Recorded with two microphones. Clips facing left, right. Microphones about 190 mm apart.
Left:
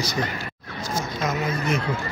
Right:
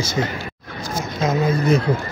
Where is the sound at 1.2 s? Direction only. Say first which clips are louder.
Right 8 dB; 35° right (ahead or behind).